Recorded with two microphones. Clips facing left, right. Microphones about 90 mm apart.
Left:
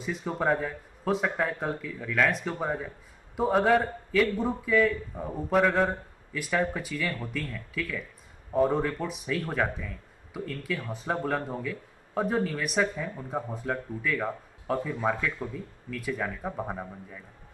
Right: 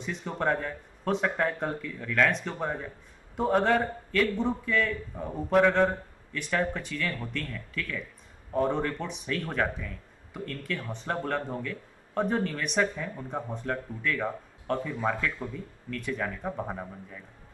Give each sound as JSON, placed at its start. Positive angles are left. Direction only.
{"t": 0.0, "sound": "speech", "side_deg": 5}